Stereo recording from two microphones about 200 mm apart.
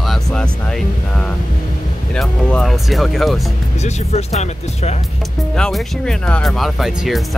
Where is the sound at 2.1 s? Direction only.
5° left (ahead or behind).